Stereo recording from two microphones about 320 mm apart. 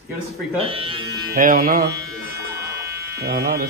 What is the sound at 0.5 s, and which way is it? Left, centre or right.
Speech, centre.